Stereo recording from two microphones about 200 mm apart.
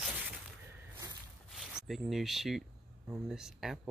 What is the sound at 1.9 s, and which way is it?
Speech, centre (ahead or behind).